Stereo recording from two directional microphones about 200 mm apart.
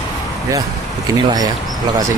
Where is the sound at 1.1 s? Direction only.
20° right (ahead or behind).